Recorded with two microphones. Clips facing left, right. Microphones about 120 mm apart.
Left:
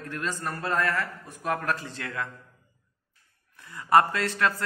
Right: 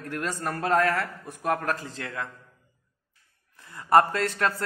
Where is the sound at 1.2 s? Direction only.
45° right (ahead or behind).